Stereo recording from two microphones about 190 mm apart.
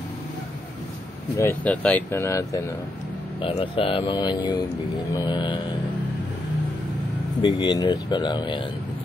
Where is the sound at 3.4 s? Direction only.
30° left (ahead or behind).